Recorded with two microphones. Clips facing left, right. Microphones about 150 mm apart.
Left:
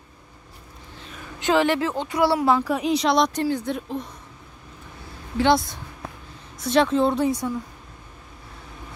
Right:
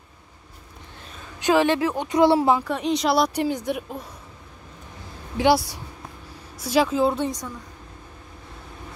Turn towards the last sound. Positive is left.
turn(degrees=0)  # may be behind; listen again after turning